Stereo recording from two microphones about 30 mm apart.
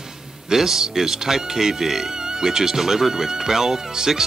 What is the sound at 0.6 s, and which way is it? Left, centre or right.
Speech, centre.